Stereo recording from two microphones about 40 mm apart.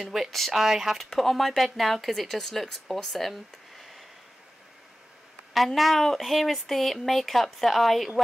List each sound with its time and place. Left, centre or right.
0.0 s speech: centre
0.6 s speech: centre
0.9 s speech: centre
5.8 s speech: centre